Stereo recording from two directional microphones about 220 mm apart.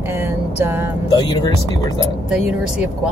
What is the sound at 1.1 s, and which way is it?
Speech, 20° left (ahead or behind).